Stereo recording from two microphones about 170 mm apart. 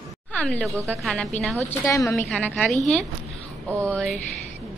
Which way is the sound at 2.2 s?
5° left (ahead or behind).